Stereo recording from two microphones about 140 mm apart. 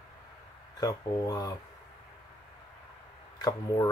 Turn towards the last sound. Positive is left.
turn(degrees=30)  # may be behind; listen again after turning